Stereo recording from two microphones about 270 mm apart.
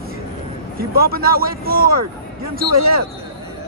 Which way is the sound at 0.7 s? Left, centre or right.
Right.